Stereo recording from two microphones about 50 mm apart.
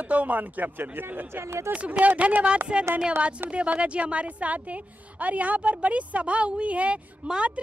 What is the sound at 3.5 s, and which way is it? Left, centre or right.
A woman's voice, right.